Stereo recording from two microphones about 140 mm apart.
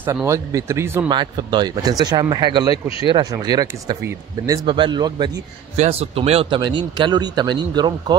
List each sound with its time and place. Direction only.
0.0 s speech: 20° right (ahead or behind)
1.0 s speech: 35° right (ahead or behind)
5.8 s speech: 45° right (ahead or behind)
6.6 s speech: 35° right (ahead or behind)